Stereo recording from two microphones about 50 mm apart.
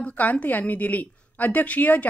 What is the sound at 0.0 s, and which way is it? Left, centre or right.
A woman's voice, left.